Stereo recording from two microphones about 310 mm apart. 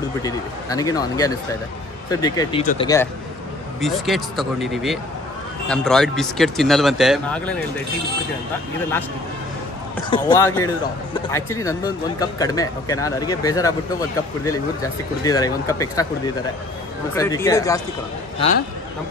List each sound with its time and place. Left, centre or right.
0.2 s speech: centre
2.6 s speech: left
3.8 s speech: centre
10.0 s speech: centre
17.1 s speech: centre